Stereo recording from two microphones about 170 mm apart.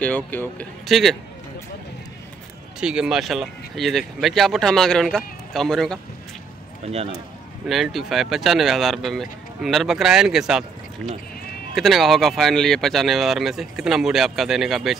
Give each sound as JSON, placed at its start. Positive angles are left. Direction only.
{"t": 0.0, "sound": "speech", "side_deg": 10}
{"t": 0.8, "sound": "speech", "side_deg": 0}
{"t": 2.8, "sound": "speech", "side_deg": -5}
{"t": 6.8, "sound": "a man's voice", "side_deg": -35}
{"t": 7.6, "sound": "speech", "side_deg": 0}
{"t": 11.7, "sound": "speech", "side_deg": 0}